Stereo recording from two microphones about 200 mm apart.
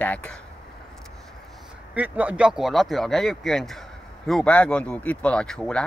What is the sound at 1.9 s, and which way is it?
Speech, 5° right (ahead or behind).